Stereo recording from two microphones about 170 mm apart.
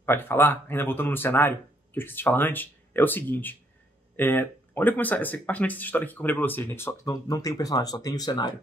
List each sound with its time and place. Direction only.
0.0 s speech: 15° left (ahead or behind)